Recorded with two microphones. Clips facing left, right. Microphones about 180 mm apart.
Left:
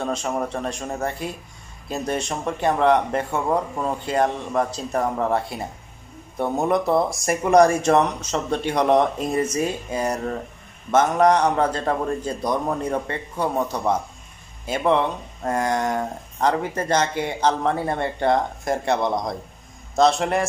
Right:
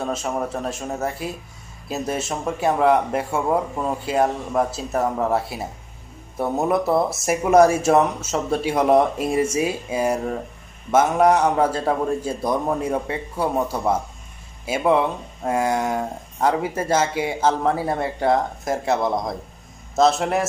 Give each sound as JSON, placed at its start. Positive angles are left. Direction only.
{"t": 0.0, "sound": "speech", "side_deg": -5}